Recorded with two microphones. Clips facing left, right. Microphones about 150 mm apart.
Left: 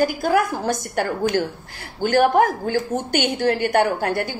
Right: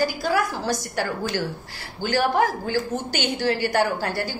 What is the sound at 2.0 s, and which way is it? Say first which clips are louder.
A woman's voice: left 5 dB; 50° left (ahead or behind).